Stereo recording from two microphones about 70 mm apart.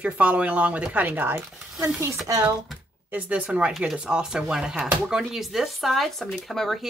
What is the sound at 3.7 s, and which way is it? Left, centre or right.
Speech, centre.